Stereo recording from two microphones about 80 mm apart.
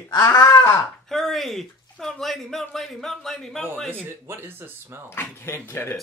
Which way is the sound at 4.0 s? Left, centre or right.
Right.